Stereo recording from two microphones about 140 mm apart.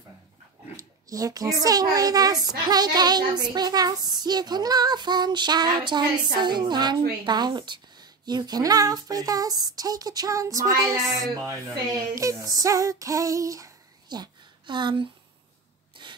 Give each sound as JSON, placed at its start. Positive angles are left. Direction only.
{"t": 0.7, "sound": "a child's voice", "side_deg": -25}
{"t": 2.7, "sound": "child singing", "side_deg": -30}
{"t": 10.8, "sound": "speech", "side_deg": -25}